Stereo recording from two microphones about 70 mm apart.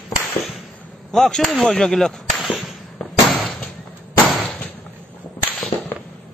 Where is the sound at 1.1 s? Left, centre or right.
Centre.